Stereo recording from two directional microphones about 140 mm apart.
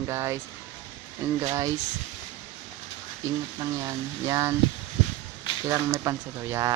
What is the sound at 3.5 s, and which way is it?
Speech, 25° right (ahead or behind).